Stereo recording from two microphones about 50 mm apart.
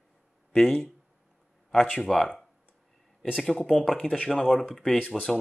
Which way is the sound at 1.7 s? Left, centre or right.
Centre.